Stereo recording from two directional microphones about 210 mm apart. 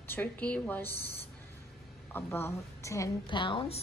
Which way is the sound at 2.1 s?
10° left (ahead or behind).